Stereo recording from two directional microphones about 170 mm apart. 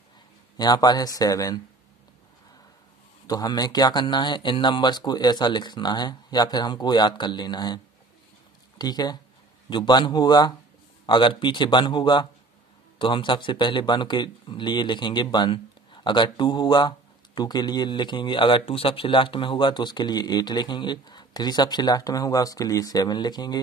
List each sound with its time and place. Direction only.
0.6 s speech: 25° left (ahead or behind)
3.3 s speech: 25° left (ahead or behind)